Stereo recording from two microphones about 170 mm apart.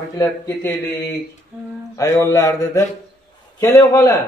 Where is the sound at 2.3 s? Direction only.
20° left (ahead or behind).